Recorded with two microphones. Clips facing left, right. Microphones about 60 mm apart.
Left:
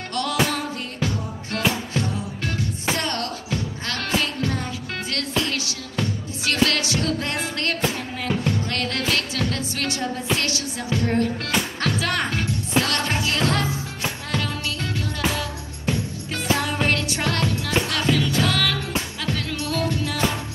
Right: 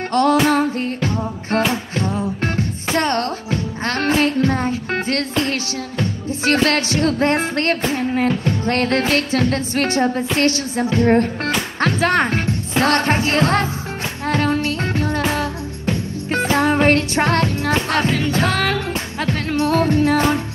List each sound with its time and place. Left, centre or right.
0.1 s music: right